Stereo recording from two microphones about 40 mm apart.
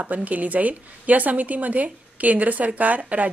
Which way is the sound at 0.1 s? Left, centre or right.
Right.